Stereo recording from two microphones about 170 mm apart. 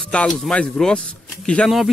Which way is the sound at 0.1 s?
5° left (ahead or behind).